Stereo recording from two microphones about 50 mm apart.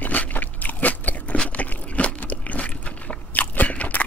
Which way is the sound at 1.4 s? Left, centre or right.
Left.